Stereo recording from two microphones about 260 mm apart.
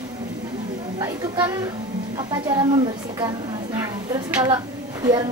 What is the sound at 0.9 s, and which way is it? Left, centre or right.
A woman's voice, centre.